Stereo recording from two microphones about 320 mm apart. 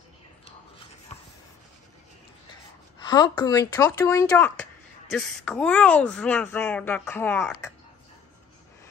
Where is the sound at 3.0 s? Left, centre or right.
Centre.